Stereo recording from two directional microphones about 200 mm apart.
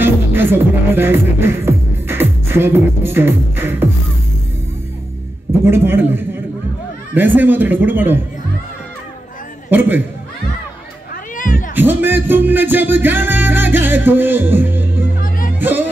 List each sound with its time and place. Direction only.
0.0 s music: 10° right (ahead or behind)
5.7 s music: 10° right (ahead or behind)
9.7 s a man's voice: 10° right (ahead or behind)
11.3 s cat: 40° left (ahead or behind)
11.7 s music: 10° right (ahead or behind)
15.1 s music: 45° left (ahead or behind)